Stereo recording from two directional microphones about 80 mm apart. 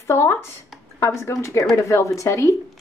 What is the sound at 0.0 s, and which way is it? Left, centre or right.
Speech, left.